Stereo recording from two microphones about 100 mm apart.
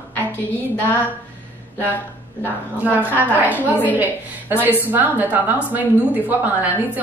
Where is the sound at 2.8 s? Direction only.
15° right (ahead or behind).